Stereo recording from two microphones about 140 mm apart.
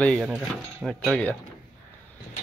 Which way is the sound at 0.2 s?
5° right (ahead or behind).